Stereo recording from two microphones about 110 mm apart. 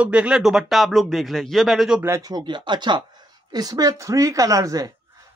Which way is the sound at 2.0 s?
30° right (ahead or behind).